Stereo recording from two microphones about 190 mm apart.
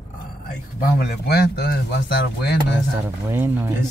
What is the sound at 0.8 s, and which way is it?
A man's voice, 55° left (ahead or behind).